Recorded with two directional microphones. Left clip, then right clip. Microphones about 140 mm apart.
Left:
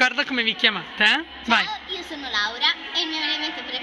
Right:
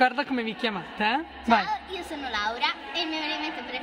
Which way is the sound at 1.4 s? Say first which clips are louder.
Left 2 dB; 15° right (ahead or behind).